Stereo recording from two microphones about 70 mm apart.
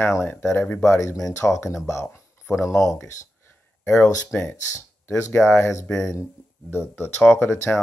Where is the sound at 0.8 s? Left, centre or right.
Left.